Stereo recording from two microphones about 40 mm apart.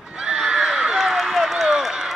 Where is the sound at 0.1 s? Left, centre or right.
Centre.